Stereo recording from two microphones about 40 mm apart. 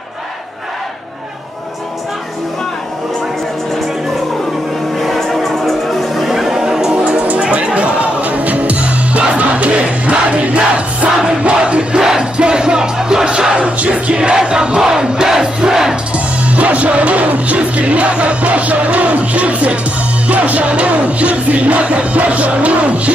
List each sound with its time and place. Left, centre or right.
4.9 s music: centre
7.1 s music: right
11.1 s music: right
12.0 s music: centre
13.6 s music: right
14.3 s crowd: centre
16.4 s music: right